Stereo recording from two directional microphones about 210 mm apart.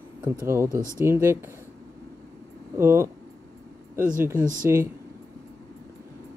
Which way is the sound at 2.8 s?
10° right (ahead or behind).